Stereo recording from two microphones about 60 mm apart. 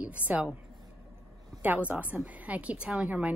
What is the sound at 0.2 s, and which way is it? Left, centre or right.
Speech, left.